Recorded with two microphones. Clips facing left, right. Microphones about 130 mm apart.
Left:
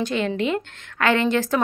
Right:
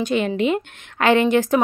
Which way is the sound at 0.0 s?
15° right (ahead or behind).